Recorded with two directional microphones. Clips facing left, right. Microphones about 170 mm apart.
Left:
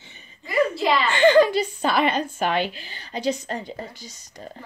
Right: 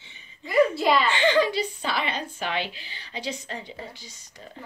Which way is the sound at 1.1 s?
50° left (ahead or behind).